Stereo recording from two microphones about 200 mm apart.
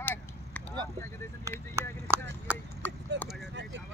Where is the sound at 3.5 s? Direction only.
60° right (ahead or behind).